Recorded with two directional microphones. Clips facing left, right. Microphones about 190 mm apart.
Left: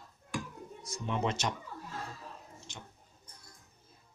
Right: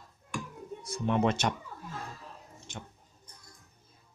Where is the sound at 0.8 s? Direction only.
60° right (ahead or behind).